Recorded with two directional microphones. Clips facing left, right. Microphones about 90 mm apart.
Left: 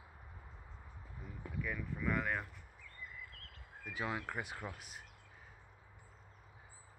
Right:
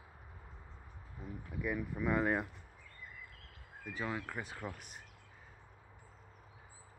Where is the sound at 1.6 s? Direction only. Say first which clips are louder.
Right 5 dB; 15° right (ahead or behind).